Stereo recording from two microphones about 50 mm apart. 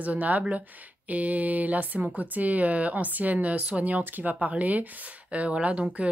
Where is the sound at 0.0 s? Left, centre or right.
Right.